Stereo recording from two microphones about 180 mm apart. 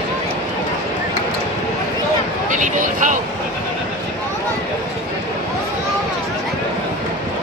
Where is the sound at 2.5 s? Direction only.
45° right (ahead or behind).